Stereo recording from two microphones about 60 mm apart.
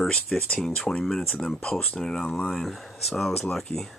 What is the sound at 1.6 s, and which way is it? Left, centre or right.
Speech, left.